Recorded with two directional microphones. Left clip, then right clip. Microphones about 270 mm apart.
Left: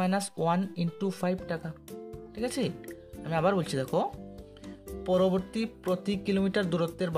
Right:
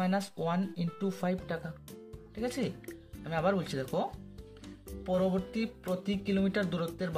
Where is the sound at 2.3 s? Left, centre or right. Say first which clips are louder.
Left 3 dB; left.